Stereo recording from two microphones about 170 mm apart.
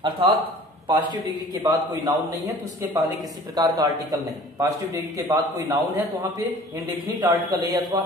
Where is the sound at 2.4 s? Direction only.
20° right (ahead or behind).